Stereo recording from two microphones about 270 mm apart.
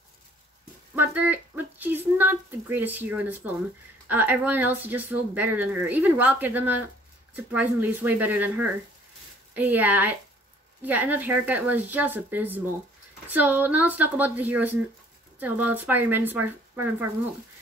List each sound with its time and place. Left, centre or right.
0.9 s speech: centre
9.6 s speech: centre